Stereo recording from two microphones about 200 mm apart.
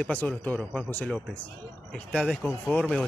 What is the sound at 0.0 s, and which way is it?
A man's voice, 5° left (ahead or behind).